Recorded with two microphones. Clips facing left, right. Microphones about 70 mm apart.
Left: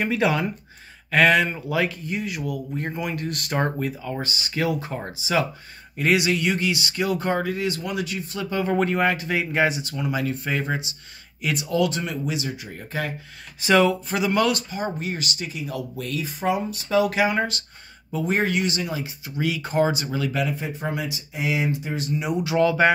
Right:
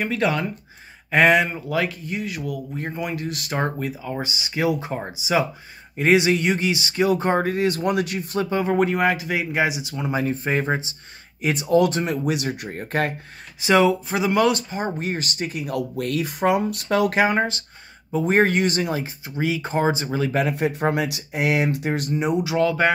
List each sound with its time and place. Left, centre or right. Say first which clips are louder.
0.0 s speech: even; centre
1.1 s speech: right 1 dB; centre
1.5 s speech: even; centre
4.1 s speech: right 1 dB; centre
7.6 s speech: right 5 dB; right
8.6 s speech: even; centre
9.9 s speech: right 2 dB; right
13.6 s speech: right 1 dB; centre
14.7 s speech: right 2 dB; right
17.4 s speech: right 2 dB; right
18.2 s speech: right 4 dB; right
20.5 s speech: right 7 dB; right
22.1 s speech: right 3 dB; right
22.4 s speech: left 4 dB; centre